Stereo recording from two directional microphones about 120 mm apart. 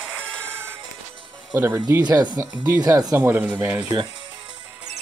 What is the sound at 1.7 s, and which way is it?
Speech, 30° right (ahead or behind).